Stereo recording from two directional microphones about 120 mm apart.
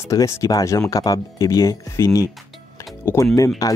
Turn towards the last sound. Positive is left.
turn(degrees=25)  # may be behind; listen again after turning